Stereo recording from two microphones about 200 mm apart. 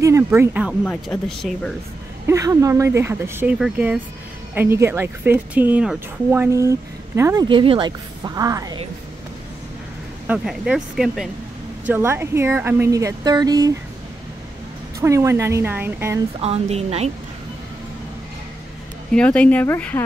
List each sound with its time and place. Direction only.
0.0 s speech: 15° right (ahead or behind)
0.8 s speech: 5° left (ahead or behind)
2.2 s a woman's voice: 15° right (ahead or behind)
7.4 s a woman's voice: 25° right (ahead or behind)
10.2 s a woman's voice: 5° right (ahead or behind)
15.0 s a woman's voice: 15° right (ahead or behind)
16.3 s speech: 30° right (ahead or behind)
19.1 s speech: 5° left (ahead or behind)